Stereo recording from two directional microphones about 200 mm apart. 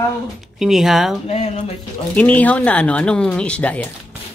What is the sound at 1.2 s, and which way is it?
Speech, 35° left (ahead or behind).